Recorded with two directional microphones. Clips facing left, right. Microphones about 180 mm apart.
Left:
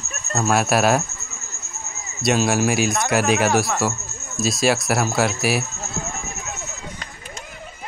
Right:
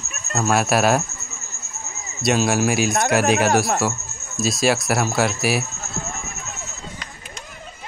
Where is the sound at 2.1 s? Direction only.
Centre (ahead or behind).